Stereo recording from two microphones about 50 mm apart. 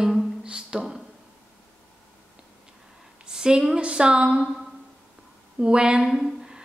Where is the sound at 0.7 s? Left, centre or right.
Centre.